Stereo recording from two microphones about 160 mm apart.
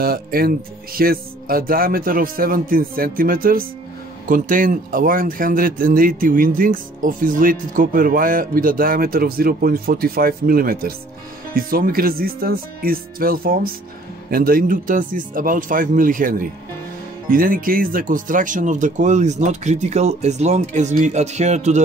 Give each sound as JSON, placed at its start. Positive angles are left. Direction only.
{"t": 0.0, "sound": "speech", "side_deg": -70}